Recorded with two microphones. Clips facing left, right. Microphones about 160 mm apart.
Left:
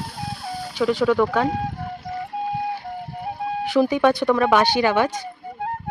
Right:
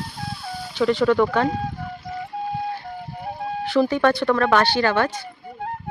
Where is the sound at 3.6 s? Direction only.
10° left (ahead or behind).